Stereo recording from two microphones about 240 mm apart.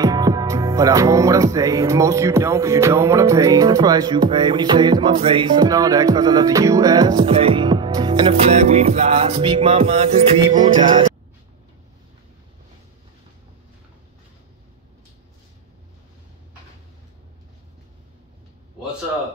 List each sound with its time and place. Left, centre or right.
0.0 s music: centre